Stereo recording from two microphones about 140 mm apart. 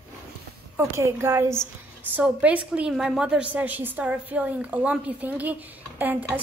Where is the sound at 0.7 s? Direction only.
20° right (ahead or behind).